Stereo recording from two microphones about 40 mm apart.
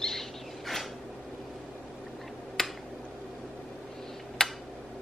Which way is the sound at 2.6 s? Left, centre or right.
Centre.